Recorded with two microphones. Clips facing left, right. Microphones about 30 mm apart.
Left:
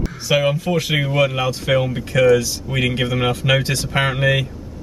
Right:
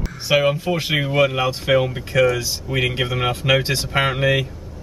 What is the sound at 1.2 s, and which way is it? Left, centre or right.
Speech, centre.